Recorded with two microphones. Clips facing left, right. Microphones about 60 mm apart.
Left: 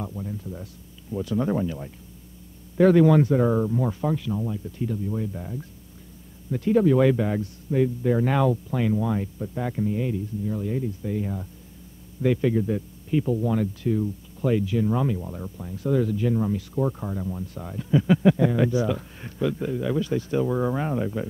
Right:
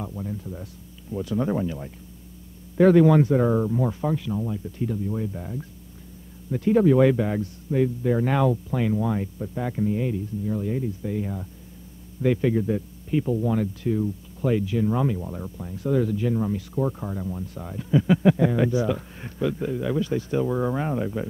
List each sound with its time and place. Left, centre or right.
0.1 s a sound: centre
1.1 s a man's voice: centre
9.8 s a man's voice: centre